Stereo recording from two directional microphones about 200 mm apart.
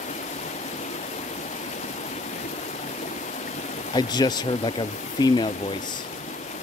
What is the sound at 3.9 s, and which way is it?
Speech, 20° left (ahead or behind).